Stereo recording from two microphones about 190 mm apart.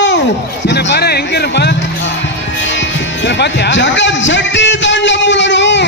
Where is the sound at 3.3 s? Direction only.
65° left (ahead or behind).